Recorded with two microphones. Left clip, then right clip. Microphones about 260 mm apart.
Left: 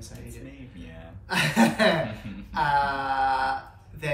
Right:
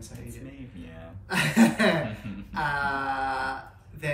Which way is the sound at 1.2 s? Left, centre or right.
Centre.